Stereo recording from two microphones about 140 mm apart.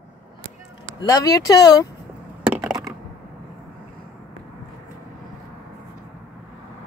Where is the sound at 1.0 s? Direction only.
25° left (ahead or behind).